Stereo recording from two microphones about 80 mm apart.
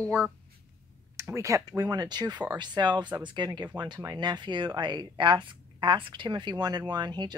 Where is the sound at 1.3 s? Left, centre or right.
Right.